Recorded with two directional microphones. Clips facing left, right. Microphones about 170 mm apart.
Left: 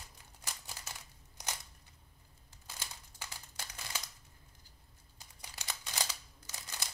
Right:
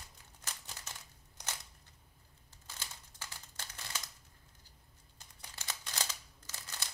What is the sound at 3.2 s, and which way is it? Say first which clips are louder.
Crumpling: left 2 dB; 15° left (ahead or behind).